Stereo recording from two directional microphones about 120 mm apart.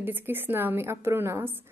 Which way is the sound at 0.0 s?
15° right (ahead or behind).